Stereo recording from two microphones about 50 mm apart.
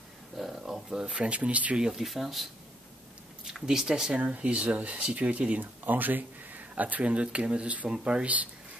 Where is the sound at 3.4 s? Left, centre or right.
Centre.